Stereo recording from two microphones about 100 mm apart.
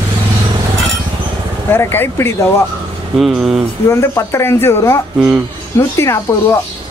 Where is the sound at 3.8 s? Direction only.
30° left (ahead or behind).